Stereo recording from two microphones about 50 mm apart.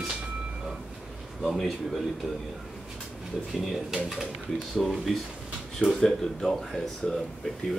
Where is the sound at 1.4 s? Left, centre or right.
Centre.